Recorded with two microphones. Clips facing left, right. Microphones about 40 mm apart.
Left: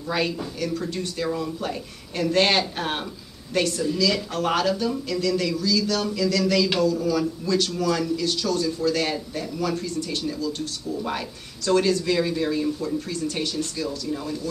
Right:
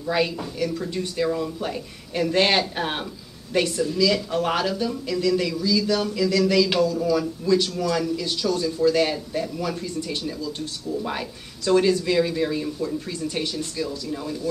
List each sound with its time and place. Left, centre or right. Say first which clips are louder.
0.0 s speech: right 2 dB; centre
3.8 s speech: right 2 dB; centre
8.2 s speech: even; centre
13.1 s speech: even; centre
13.8 s speech: left 1 dB; centre